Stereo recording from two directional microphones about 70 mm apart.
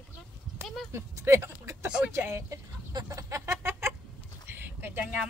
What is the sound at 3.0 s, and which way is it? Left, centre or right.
Music, right.